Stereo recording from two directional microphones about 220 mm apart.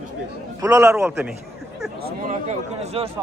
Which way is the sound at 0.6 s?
15° right (ahead or behind).